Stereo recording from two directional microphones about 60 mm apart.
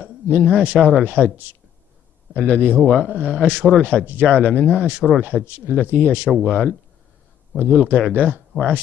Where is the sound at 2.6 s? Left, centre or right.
Left.